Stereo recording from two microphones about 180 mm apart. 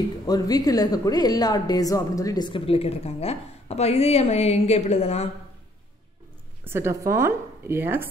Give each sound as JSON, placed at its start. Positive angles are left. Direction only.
{"t": 0.3, "sound": "a woman's voice", "side_deg": 20}
{"t": 6.6, "sound": "a woman's voice", "side_deg": -15}